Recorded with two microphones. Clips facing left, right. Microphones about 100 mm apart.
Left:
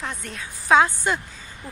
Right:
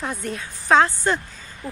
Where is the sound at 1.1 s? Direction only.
10° left (ahead or behind).